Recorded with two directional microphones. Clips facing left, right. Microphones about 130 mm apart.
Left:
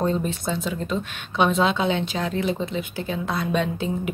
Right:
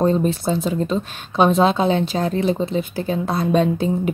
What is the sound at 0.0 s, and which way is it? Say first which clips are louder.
Speech: right 6 dB; 40° right (ahead or behind).